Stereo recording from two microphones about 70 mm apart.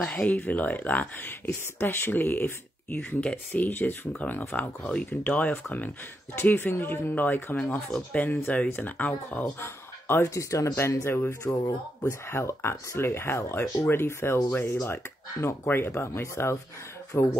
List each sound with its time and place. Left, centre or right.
0.1 s speech: left
9.6 s a sound: left
10.3 s speech: left
10.8 s speech: left